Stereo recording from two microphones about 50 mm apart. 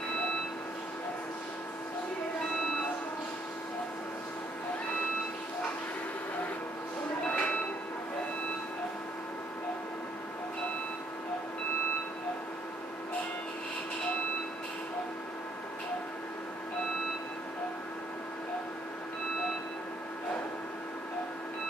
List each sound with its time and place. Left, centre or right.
7.2 s train: left